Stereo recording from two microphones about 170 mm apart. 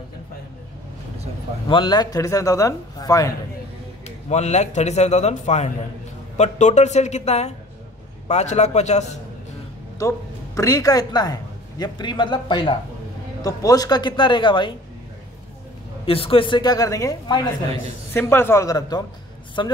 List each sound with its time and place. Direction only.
1.7 s a man's voice: 25° left (ahead or behind)
4.3 s a man's voice: 40° left (ahead or behind)
9.9 s a man's voice: 20° left (ahead or behind)
16.1 s a man's voice: 35° left (ahead or behind)